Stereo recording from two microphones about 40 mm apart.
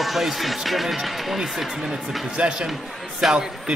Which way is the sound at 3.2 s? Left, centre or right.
Centre.